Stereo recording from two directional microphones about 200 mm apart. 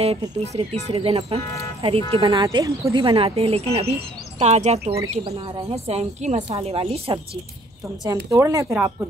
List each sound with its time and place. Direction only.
0.0 s speech: 30° right (ahead or behind)
8.3 s speech: 15° right (ahead or behind)